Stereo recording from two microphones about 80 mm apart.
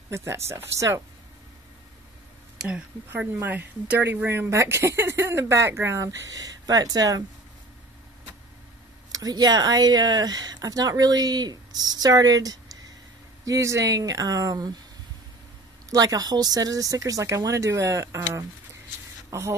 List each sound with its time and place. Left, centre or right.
0.1 s speech: right
3.1 s speech: right
9.1 s speech: right
15.9 s speech: right